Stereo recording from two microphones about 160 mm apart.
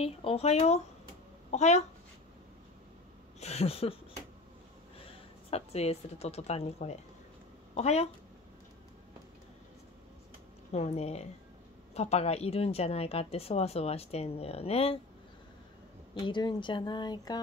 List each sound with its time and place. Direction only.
0.0 s a woman's voice: 40° left (ahead or behind)
3.3 s a woman's voice: 40° left (ahead or behind)
5.5 s a woman's voice: 40° left (ahead or behind)
10.7 s a woman's voice: 40° left (ahead or behind)
16.3 s speech: 30° left (ahead or behind)